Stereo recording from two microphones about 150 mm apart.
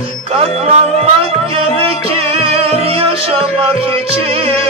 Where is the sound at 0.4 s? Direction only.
45° right (ahead or behind).